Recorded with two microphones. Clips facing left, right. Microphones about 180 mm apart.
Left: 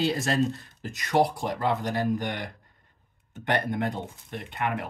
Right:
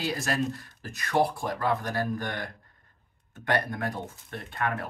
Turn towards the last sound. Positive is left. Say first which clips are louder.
# left 1 dB
turn(degrees=20)  # may be behind; listen again after turning